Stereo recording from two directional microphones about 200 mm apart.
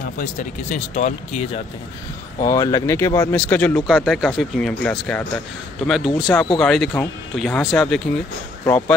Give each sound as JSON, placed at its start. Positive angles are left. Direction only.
{"t": 0.2, "sound": "speech", "side_deg": 35}
{"t": 2.4, "sound": "speech", "side_deg": 15}